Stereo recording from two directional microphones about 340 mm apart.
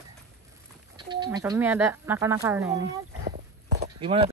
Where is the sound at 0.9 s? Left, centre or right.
Centre.